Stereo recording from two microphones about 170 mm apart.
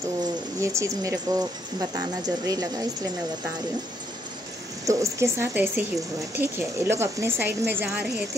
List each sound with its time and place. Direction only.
0.2 s speech: 20° right (ahead or behind)
4.8 s speech: 15° right (ahead or behind)